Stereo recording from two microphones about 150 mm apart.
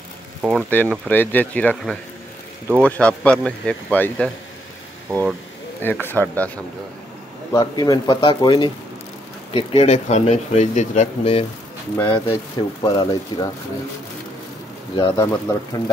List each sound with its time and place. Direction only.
0.4 s speech: centre (ahead or behind)
0.7 s speech: 10° left (ahead or behind)
5.8 s speech: 15° left (ahead or behind)
7.5 s speech: 25° left (ahead or behind)
9.6 s speech: 40° left (ahead or behind)
12.0 s speech: 20° left (ahead or behind)
15.1 s speech: 20° left (ahead or behind)